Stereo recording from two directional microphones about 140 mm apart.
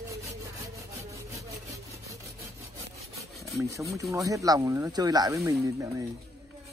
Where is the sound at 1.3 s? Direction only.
20° right (ahead or behind).